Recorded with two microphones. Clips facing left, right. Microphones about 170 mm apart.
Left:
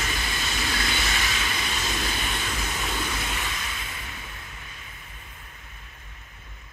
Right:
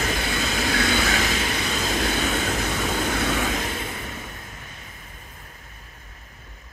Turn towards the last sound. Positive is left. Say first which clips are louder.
# right 2 dB
turn(degrees=-40)  # may be behind; listen again after turning